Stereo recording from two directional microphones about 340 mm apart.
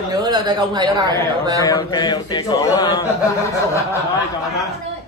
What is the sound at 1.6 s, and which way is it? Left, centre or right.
Speech, centre.